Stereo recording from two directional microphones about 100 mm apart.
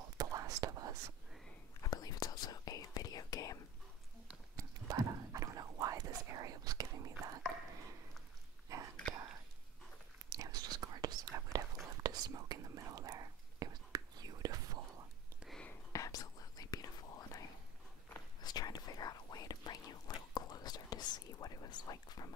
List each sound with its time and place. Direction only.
0.2 s whispering: 40° right (ahead or behind)
1.8 s whispering: 40° left (ahead or behind)
4.6 s whispering: 35° right (ahead or behind)
8.7 s whispering: 30° right (ahead or behind)
10.3 s whispering: 35° right (ahead or behind)
15.9 s whispering: 35° left (ahead or behind)
18.4 s whispering: 40° left (ahead or behind)